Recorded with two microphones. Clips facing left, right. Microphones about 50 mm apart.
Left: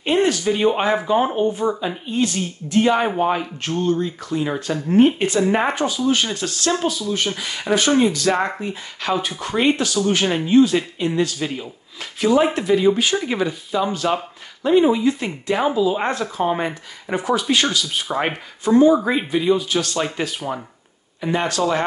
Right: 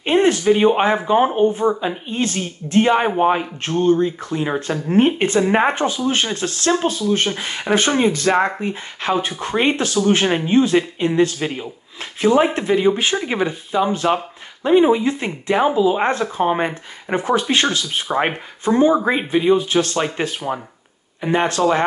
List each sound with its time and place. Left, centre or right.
0.0 s speech: right